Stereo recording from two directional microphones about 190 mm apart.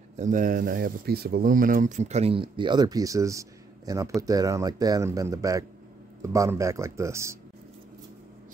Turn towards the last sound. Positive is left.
turn(degrees=-15)  # may be behind; listen again after turning